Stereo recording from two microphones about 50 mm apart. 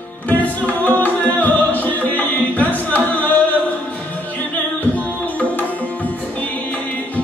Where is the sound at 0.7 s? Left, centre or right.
Left.